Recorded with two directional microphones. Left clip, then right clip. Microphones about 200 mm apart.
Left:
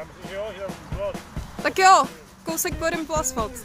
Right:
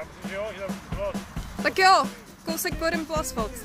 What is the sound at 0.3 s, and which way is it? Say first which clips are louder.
Music: left 1 dB; 10° left (ahead or behind).